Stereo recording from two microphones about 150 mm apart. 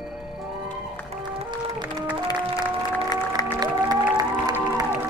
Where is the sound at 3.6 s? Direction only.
25° right (ahead or behind).